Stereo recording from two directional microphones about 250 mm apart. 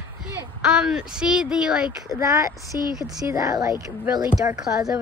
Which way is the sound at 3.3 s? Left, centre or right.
Centre.